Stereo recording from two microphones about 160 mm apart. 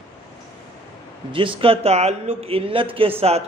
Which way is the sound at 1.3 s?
35° right (ahead or behind).